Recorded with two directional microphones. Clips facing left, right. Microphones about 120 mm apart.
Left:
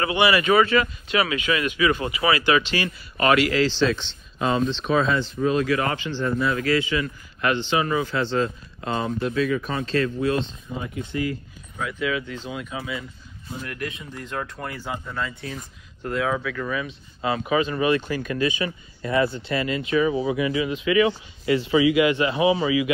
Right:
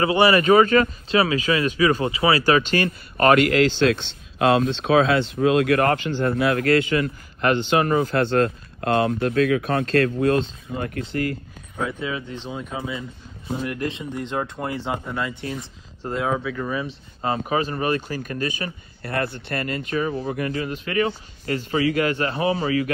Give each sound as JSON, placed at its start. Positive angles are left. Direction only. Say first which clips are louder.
{"t": 0.0, "sound": "speech", "louder": "right 3 dB", "side_deg": -35}
{"t": 1.0, "sound": "speech", "louder": "right 3 dB", "side_deg": -30}
{"t": 2.4, "sound": "speech", "louder": "right 3 dB", "side_deg": -45}
{"t": 6.3, "sound": "speech", "louder": "right 3 dB", "side_deg": -60}
{"t": 12.0, "sound": "speech", "louder": "left 2 dB", "side_deg": -30}
{"t": 16.3, "sound": "speech", "louder": "right 1 dB", "side_deg": -20}
{"t": 20.1, "sound": "speech", "louder": "left 3 dB", "side_deg": 90}
{"t": 20.3, "sound": "speech", "louder": "left 2 dB", "side_deg": -50}